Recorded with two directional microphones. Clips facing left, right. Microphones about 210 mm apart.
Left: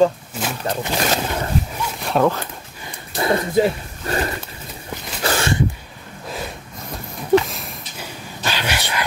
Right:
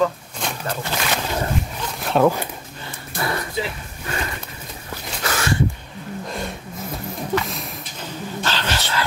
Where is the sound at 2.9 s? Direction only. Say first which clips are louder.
Left 6 dB; 20° left (ahead or behind).